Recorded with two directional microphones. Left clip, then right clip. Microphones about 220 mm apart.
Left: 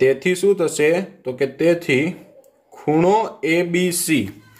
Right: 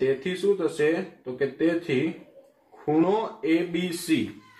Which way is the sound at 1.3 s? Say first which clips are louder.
Left 7 dB; 55° left (ahead or behind).